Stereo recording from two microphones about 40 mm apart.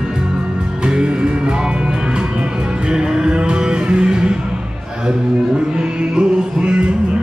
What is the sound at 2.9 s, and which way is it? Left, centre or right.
Music, right.